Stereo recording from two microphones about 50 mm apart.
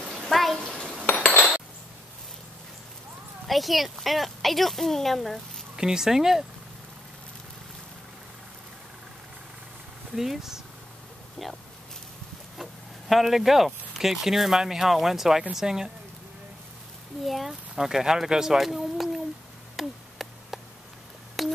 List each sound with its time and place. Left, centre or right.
0.0 s bathtub: centre
3.4 s speech: centre
5.8 s speech: centre
10.1 s speech: centre
13.1 s speech: centre
17.2 s speech: centre
19.8 s a sound: centre